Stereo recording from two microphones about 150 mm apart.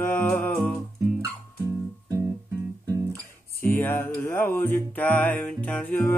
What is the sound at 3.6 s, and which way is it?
Music, 15° left (ahead or behind).